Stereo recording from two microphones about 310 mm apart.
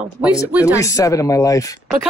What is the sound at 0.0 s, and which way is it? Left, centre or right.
Speech, centre.